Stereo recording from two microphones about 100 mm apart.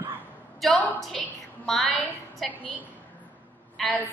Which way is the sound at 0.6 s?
15° left (ahead or behind).